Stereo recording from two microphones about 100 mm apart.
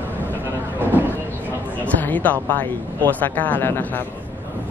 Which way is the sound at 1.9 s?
15° left (ahead or behind).